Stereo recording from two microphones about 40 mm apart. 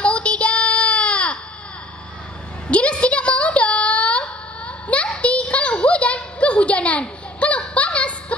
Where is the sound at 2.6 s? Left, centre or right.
Left.